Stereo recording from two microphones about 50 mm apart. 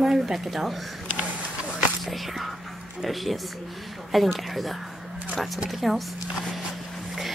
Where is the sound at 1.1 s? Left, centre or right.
Right.